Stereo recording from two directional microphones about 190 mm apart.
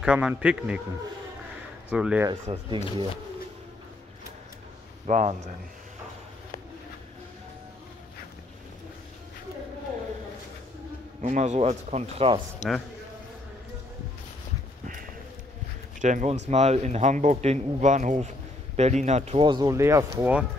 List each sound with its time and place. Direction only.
0.0 s a man's voice: 5° right (ahead or behind)
1.9 s speech: 5° right (ahead or behind)
2.4 s speech: 30° right (ahead or behind)
5.0 s speech: 40° right (ahead or behind)
11.2 s speech: 40° right (ahead or behind)
16.0 s speech: 40° right (ahead or behind)
19.4 s speech: 20° right (ahead or behind)